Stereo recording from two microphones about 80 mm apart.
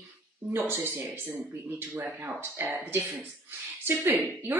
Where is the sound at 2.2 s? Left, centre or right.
Right.